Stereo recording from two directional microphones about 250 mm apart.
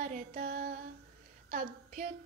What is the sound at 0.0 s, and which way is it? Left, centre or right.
Music, right.